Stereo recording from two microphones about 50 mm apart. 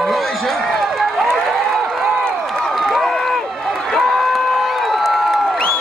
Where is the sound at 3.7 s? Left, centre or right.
Centre.